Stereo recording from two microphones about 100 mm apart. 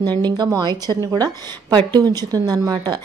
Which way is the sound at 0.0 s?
45° right (ahead or behind).